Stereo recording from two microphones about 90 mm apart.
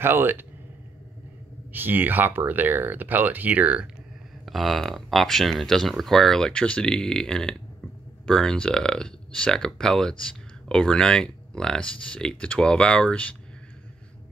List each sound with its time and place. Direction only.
0.0 s speech: 25° right (ahead or behind)
1.7 s speech: 20° right (ahead or behind)
4.5 s speech: centre (ahead or behind)